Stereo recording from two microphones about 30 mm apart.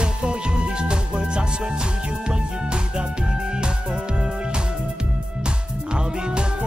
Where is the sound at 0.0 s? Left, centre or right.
Right.